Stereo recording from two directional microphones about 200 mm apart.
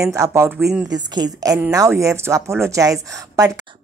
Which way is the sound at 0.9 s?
20° right (ahead or behind).